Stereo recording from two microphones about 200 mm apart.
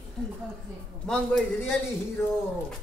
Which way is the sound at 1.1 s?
Centre (ahead or behind).